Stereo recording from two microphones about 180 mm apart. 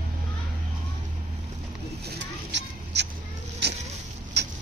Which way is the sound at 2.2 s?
80° right.